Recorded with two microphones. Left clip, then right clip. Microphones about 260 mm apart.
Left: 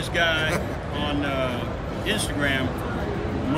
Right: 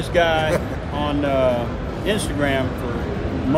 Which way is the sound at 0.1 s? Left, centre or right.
Centre.